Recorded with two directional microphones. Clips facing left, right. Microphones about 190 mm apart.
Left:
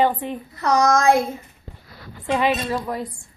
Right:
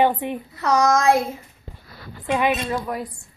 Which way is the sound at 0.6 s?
5° right (ahead or behind).